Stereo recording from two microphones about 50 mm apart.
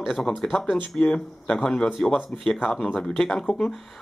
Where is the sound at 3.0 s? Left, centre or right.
Centre.